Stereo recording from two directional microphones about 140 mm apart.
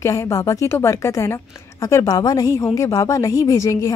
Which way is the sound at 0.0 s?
20° left (ahead or behind).